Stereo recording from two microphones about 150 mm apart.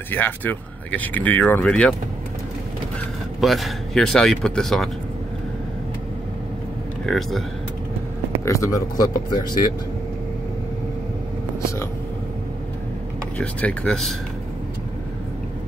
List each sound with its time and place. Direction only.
0.1 s speech: 10° left (ahead or behind)
3.3 s speech: centre (ahead or behind)
7.1 s speech: centre (ahead or behind)
8.5 s speech: 20° left (ahead or behind)
13.4 s speech: 10° left (ahead or behind)